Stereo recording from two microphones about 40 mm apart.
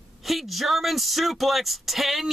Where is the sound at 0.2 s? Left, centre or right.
Centre.